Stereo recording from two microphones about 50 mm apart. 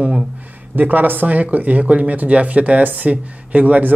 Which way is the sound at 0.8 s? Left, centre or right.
Right.